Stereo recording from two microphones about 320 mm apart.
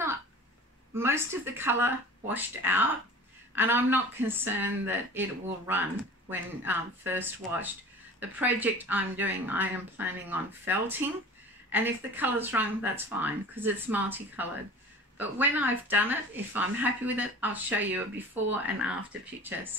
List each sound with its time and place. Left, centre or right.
0.9 s speech: centre